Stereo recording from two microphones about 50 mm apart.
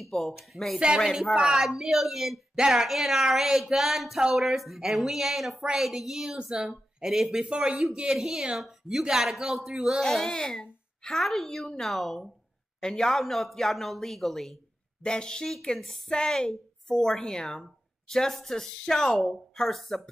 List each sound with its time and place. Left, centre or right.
0.0 s a woman's voice: centre
10.0 s a woman's voice: centre
13.2 s a woman's voice: centre
15.0 s a woman's voice: centre